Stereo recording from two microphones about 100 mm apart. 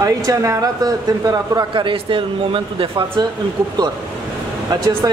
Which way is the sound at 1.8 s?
60° right (ahead or behind).